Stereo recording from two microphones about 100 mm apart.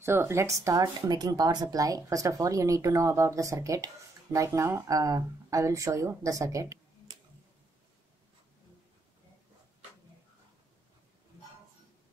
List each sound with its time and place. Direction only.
0.0 s speech: 25° right (ahead or behind)